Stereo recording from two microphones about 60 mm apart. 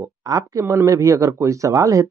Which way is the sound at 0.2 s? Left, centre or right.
Right.